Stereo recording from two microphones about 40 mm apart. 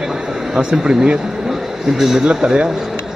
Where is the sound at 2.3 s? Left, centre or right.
Right.